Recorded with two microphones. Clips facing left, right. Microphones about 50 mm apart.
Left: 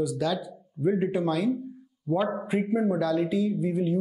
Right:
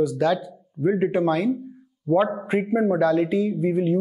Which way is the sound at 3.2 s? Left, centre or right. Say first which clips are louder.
Right 4 dB; centre.